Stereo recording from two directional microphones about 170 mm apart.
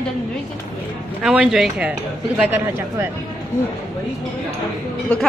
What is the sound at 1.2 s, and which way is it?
Speech, centre (ahead or behind).